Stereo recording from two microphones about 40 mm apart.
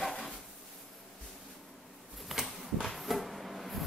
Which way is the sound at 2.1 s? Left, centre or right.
Centre.